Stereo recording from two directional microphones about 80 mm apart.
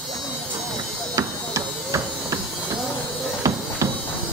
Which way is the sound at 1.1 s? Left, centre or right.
Right.